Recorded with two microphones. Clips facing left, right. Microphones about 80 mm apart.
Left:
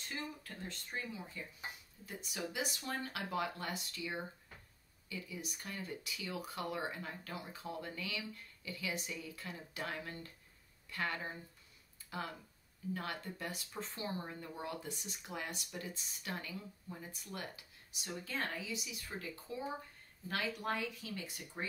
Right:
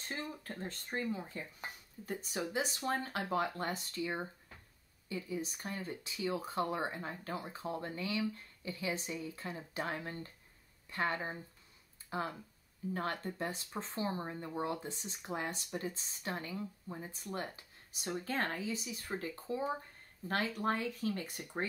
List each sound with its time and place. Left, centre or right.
0.1 s speech: right